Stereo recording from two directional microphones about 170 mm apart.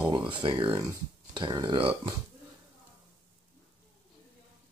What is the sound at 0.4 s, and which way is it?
Speech, 30° right (ahead or behind).